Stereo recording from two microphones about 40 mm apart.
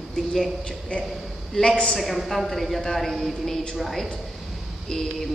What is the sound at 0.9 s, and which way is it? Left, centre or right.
Speech, left.